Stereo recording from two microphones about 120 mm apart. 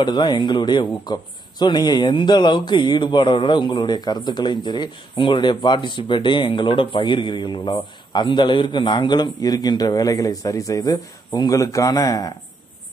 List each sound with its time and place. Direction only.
0.0 s speech: 35° left (ahead or behind)